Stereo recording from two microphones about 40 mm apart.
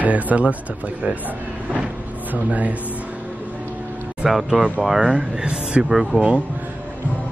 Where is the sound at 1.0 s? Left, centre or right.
Right.